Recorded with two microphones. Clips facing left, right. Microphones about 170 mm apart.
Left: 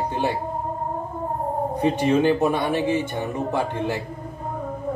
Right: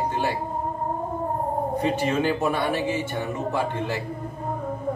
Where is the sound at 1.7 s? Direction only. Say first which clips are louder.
Left 5 dB; 20° left (ahead or behind).